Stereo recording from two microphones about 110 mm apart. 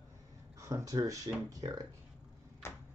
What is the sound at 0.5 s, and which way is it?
Speech, 30° right (ahead or behind).